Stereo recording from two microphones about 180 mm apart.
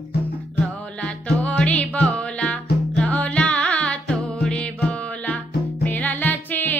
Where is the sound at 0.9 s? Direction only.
5° left (ahead or behind).